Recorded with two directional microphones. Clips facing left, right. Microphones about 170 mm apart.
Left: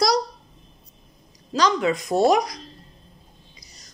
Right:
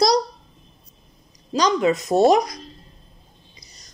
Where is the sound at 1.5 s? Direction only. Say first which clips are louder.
Right 2 dB; 20° right (ahead or behind).